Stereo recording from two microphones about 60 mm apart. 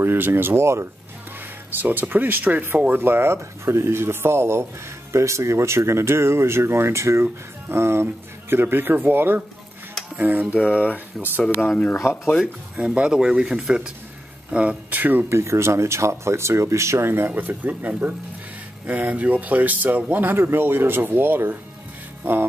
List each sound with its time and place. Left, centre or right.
0.0 s speech: right
1.8 s speech: right
11.2 s speech: centre
11.7 s speech: left
12.7 s speech: centre
15.2 s speech: right
17.3 s speech: right
22.2 s music: right